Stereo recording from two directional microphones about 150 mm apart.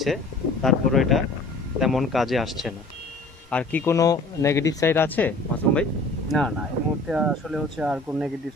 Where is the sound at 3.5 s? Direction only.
15° left (ahead or behind).